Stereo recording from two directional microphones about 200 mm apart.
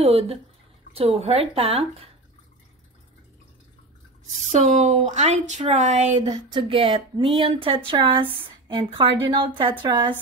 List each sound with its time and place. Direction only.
0.0 s a woman's voice: 30° right (ahead or behind)
4.5 s a woman's voice: 35° right (ahead or behind)